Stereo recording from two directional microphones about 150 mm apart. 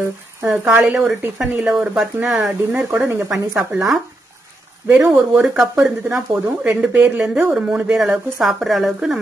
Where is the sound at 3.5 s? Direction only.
5° right (ahead or behind).